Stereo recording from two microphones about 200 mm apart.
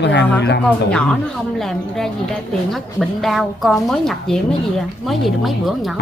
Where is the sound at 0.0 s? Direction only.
60° left (ahead or behind).